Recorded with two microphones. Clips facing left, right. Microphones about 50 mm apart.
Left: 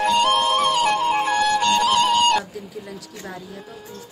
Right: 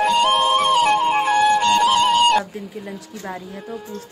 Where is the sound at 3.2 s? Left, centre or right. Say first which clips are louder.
Right 5 dB; right.